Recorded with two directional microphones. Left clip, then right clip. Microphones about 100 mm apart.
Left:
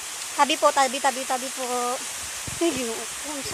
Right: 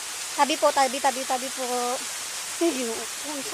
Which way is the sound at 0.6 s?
10° right (ahead or behind).